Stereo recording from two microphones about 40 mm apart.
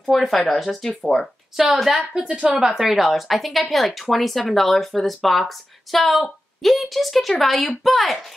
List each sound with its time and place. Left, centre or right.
0.0 s speech: centre
0.8 s speech: centre
1.7 s speech: centre
2.1 s speech: right
2.6 s speech: centre